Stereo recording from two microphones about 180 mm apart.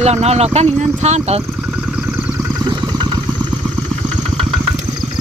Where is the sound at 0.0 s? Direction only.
35° right (ahead or behind).